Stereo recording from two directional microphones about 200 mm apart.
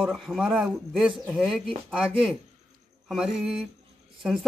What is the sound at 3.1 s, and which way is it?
Speech, centre (ahead or behind).